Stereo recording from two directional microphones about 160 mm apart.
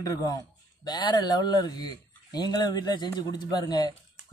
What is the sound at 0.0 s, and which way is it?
Speech, 20° left (ahead or behind).